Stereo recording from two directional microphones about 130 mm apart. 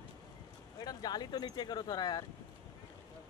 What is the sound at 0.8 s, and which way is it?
Speech, 30° left (ahead or behind).